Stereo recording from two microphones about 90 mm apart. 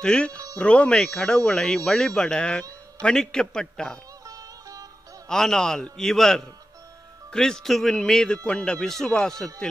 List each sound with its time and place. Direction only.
0.0 s speech: 10° left (ahead or behind)
4.3 s sitar: 40° right (ahead or behind)
5.3 s a man's voice: 5° left (ahead or behind)